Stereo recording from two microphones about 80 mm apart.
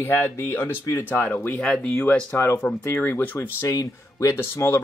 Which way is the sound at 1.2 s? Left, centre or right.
Left.